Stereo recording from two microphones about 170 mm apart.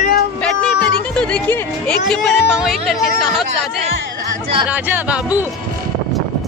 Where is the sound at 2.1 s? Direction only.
Centre (ahead or behind).